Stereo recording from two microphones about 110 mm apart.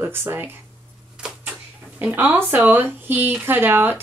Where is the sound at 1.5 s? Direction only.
15° right (ahead or behind).